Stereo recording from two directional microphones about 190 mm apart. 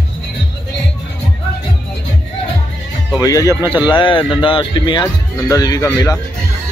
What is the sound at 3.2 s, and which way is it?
Speech, 20° left (ahead or behind).